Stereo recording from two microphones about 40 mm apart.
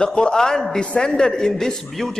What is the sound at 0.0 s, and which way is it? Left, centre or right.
A man's voice, centre.